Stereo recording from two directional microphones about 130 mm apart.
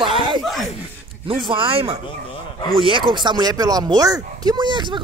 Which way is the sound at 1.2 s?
40° right (ahead or behind).